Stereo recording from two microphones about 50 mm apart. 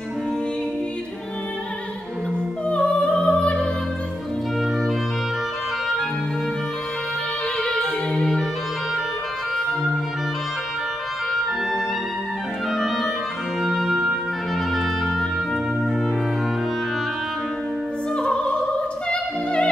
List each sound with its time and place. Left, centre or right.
2.7 s music: left
7.6 s music: centre
12.7 s clarinet: centre
13.6 s organ: centre
14.7 s music: centre
18.1 s opera: centre